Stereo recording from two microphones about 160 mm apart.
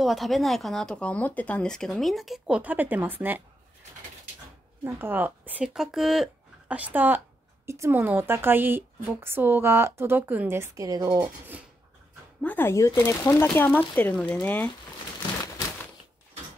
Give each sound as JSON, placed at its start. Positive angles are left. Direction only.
{"t": 0.0, "sound": "speech", "side_deg": 0}
{"t": 4.8, "sound": "a woman's voice", "side_deg": -15}
{"t": 12.4, "sound": "speech", "side_deg": 10}